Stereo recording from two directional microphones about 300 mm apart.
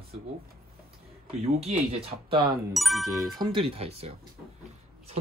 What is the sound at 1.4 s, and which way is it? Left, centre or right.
Speech, centre.